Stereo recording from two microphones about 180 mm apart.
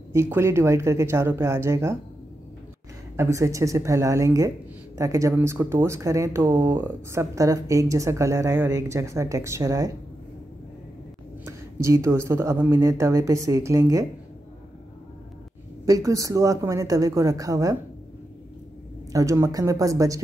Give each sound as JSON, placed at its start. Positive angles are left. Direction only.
{"t": 0.1, "sound": "speech", "side_deg": -15}
{"t": 3.2, "sound": "speech", "side_deg": -15}
{"t": 11.4, "sound": "speech", "side_deg": -15}
{"t": 15.8, "sound": "speech", "side_deg": -20}
{"t": 19.1, "sound": "speech", "side_deg": -15}